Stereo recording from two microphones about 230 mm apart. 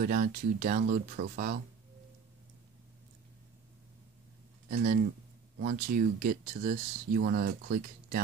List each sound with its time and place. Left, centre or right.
0.0 s speech: right
4.6 s speech: right